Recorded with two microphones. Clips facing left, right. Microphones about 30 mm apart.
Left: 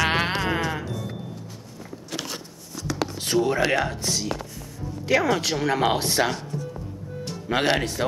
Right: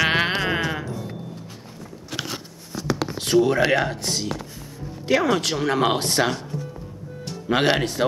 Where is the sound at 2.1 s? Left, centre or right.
Centre.